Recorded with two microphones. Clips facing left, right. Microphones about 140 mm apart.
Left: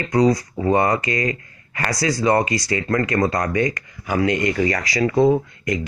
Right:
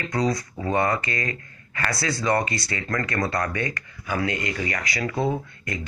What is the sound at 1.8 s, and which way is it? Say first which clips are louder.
Speech: left 5 dB; 35° left (ahead or behind).